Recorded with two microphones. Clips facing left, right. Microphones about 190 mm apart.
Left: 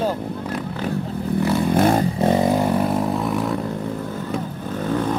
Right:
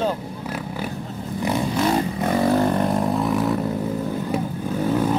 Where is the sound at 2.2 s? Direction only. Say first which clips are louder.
Even; 20° left (ahead or behind).